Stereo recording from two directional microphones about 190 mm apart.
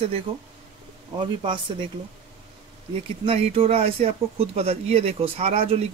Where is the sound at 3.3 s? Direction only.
30° right (ahead or behind).